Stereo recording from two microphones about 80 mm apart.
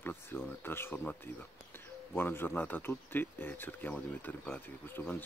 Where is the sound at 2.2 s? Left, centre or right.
Left.